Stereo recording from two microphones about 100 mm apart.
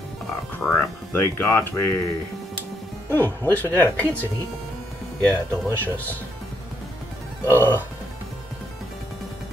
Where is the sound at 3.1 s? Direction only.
20° left (ahead or behind).